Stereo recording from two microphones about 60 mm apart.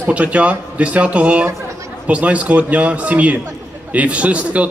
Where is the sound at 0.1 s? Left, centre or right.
Right.